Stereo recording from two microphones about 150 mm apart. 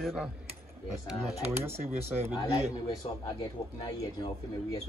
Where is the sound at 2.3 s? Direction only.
30° left (ahead or behind).